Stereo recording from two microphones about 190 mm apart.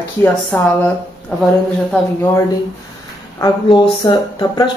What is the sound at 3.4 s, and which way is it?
Speech, 25° left (ahead or behind).